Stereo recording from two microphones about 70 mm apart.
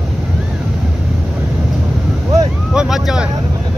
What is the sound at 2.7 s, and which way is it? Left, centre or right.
Vehicle, centre.